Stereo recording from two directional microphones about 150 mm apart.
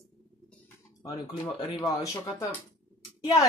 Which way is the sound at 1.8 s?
20° left (ahead or behind).